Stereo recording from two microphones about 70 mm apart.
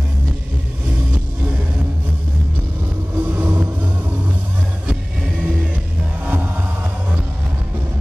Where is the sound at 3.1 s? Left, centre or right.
Right.